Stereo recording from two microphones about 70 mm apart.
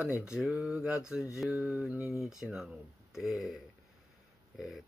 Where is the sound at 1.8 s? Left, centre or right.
Centre.